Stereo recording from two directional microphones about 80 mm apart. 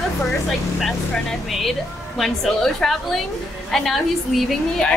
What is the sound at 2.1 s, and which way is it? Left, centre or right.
A woman's voice, centre.